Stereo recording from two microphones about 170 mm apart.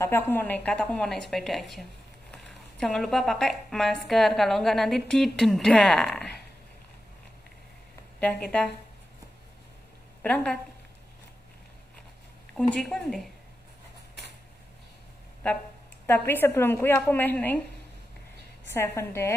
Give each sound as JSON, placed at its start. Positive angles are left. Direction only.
{"t": 0.0, "sound": "a woman's voice", "side_deg": 10}
{"t": 8.2, "sound": "a woman's voice", "side_deg": 5}
{"t": 10.2, "sound": "a woman's voice", "side_deg": 5}
{"t": 12.5, "sound": "a woman's voice", "side_deg": 0}
{"t": 16.3, "sound": "a woman's voice", "side_deg": 15}
{"t": 18.9, "sound": "a woman's voice", "side_deg": 15}